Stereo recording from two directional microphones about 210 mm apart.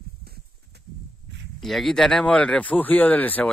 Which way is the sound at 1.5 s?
Centre (ahead or behind).